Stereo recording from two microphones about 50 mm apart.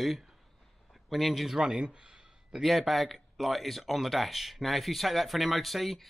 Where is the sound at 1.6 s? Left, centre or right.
Centre.